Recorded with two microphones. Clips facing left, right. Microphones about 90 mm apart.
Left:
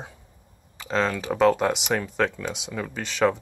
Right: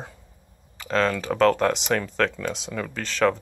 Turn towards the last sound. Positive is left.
turn(degrees=15)  # may be behind; listen again after turning